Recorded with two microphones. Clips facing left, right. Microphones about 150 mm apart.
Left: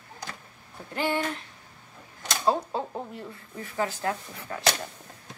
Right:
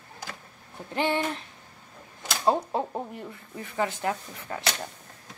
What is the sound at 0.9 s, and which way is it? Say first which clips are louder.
Speech: right 1 dB; 20° right (ahead or behind).